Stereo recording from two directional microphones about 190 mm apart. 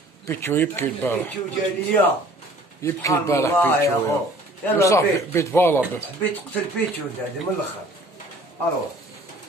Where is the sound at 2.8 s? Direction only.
15° left (ahead or behind).